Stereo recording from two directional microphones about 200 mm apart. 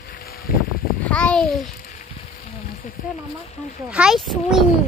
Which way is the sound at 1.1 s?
5° left (ahead or behind).